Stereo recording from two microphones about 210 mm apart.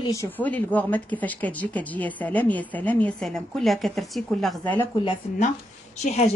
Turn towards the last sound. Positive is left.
turn(degrees=30)  # may be behind; listen again after turning